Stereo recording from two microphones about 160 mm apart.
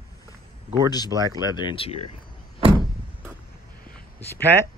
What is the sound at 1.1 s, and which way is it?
Speech, 25° right (ahead or behind).